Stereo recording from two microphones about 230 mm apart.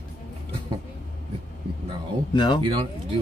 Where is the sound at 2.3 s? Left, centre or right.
Centre.